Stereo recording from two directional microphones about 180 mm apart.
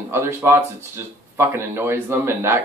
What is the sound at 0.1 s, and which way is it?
Speech, 10° right (ahead or behind).